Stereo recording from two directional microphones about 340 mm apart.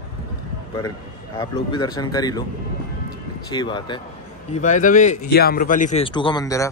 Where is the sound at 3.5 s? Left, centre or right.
Centre.